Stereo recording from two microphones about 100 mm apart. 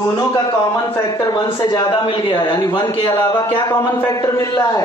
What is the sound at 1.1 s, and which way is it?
A man's voice, 50° left (ahead or behind).